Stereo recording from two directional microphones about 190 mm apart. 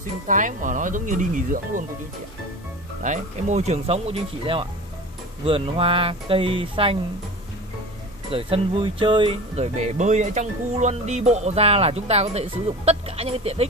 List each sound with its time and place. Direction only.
0.3 s speech: 45° right (ahead or behind)
3.0 s speech: 40° right (ahead or behind)
8.3 s speech: 30° right (ahead or behind)